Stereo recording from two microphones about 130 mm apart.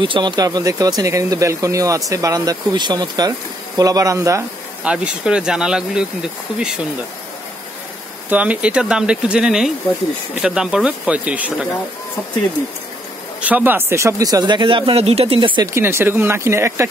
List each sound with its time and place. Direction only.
0.0 s speech: 35° right (ahead or behind)
4.8 s speech: 5° right (ahead or behind)
8.3 s speech: 10° right (ahead or behind)
13.4 s speech: 10° right (ahead or behind); by 15.6 s 40° right (ahead or behind)
15.6 s speech: 20° right (ahead or behind)